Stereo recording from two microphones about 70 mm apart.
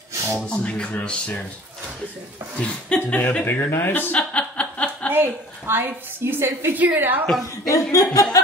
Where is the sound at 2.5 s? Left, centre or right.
Centre.